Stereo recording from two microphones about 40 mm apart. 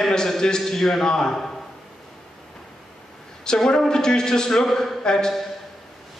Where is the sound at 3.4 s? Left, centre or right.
Centre.